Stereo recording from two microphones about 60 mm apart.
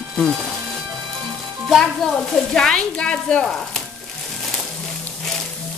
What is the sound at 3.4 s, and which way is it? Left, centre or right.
Speech, centre.